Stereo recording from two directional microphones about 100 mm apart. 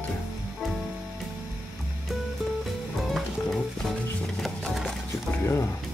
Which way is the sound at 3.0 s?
Centre (ahead or behind).